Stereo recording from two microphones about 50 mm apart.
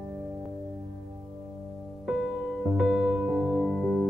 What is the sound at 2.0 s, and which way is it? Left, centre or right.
Music, centre.